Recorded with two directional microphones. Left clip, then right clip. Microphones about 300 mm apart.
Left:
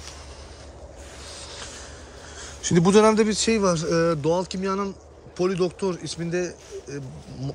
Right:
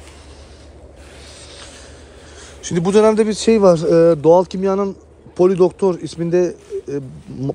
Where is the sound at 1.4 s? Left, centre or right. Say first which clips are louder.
Even; left.